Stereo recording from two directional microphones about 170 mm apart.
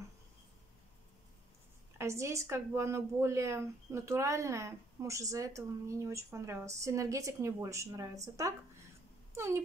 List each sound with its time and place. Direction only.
2.0 s a woman's voice: 15° right (ahead or behind)